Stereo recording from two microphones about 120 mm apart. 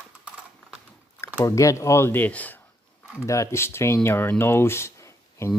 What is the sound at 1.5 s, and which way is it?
Speech, 25° left (ahead or behind).